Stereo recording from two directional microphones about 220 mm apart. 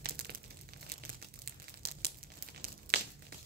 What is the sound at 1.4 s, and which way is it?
Crumpling, 45° right (ahead or behind).